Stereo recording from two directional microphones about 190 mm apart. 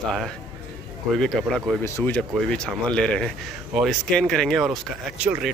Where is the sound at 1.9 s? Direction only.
10° left (ahead or behind).